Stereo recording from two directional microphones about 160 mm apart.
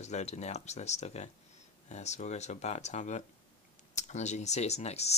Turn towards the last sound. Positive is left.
turn(degrees=40)  # may be behind; listen again after turning